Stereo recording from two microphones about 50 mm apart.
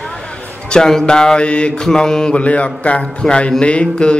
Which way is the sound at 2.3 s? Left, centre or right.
Left.